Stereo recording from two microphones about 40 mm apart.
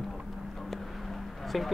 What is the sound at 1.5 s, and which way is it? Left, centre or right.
Speech, centre.